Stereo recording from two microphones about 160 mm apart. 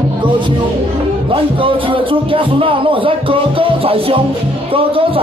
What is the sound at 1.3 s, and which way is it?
A man's voice, 35° right (ahead or behind).